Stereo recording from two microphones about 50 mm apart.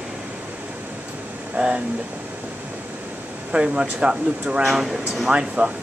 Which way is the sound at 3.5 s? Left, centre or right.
Centre.